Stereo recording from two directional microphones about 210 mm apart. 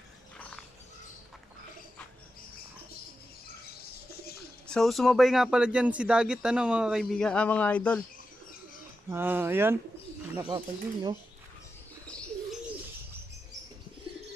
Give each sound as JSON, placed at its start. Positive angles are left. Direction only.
{"t": 4.6, "sound": "speech", "side_deg": 0}
{"t": 9.1, "sound": "speech", "side_deg": -10}
{"t": 10.4, "sound": "speech", "side_deg": -20}